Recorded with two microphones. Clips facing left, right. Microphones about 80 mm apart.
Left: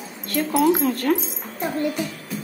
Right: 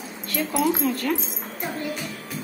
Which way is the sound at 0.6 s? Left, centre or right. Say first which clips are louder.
Left 4 dB; left.